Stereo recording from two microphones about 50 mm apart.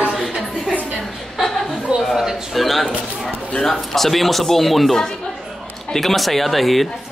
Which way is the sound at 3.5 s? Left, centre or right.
Centre.